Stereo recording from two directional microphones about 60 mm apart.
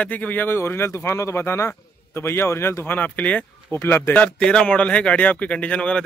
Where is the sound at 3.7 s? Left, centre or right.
Left.